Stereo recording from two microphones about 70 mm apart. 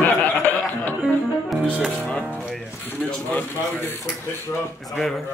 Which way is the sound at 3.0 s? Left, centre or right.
Centre.